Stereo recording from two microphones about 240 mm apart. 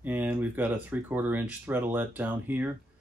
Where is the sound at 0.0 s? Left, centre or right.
Centre.